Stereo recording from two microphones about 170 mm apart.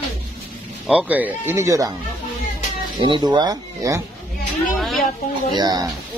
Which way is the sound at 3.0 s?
25° right (ahead or behind).